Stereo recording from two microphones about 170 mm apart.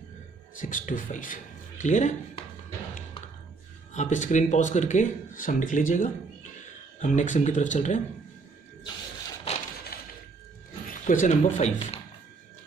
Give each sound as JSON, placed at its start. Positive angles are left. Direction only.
{"t": 0.6, "sound": "speech", "side_deg": 50}
{"t": 3.9, "sound": "speech", "side_deg": 45}
{"t": 9.9, "sound": "a sound", "side_deg": 60}
{"t": 10.9, "sound": "speech", "side_deg": 50}